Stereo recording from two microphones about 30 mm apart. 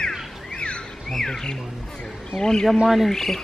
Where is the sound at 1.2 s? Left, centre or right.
Left.